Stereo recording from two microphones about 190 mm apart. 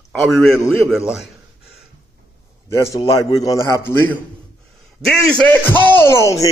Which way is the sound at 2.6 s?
15° left (ahead or behind).